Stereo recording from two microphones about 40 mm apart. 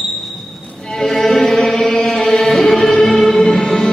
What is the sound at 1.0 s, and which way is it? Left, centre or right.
Music, centre.